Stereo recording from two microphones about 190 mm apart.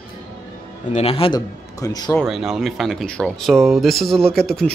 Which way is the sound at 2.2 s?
Centre (ahead or behind).